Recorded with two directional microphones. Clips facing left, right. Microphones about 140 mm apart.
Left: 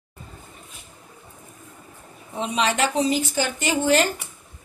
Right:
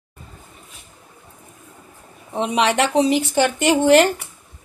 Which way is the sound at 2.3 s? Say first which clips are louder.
Right 4 dB; 65° right (ahead or behind).